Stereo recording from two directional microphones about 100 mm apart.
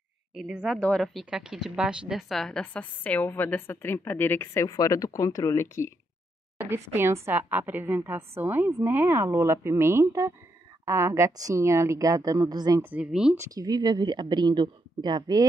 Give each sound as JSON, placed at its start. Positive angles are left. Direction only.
{"t": 0.3, "sound": "speech", "side_deg": -5}
{"t": 0.7, "sound": "a woman's voice", "side_deg": 10}
{"t": 4.6, "sound": "speech", "side_deg": 35}
{"t": 6.6, "sound": "a woman's voice", "side_deg": -25}
{"t": 12.9, "sound": "speech", "side_deg": -10}
{"t": 13.4, "sound": "a woman's voice", "side_deg": -40}